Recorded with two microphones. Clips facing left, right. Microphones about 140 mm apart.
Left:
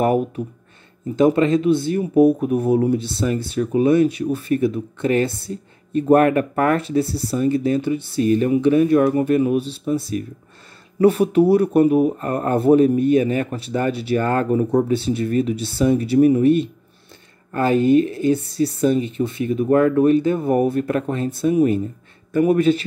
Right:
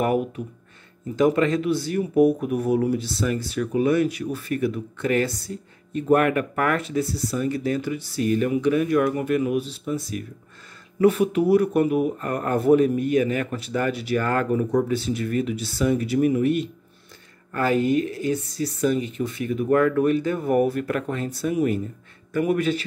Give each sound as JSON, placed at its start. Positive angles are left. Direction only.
{"t": 1.1, "sound": "speech", "side_deg": 25}